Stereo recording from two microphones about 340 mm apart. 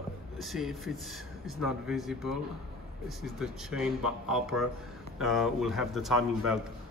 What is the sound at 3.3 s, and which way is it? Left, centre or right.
Speech, centre.